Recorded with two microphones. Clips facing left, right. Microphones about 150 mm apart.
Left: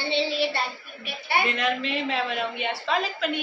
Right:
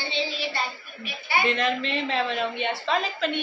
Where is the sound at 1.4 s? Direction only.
5° left (ahead or behind).